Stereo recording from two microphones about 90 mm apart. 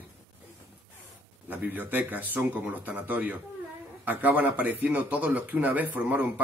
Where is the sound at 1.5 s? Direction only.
20° right (ahead or behind).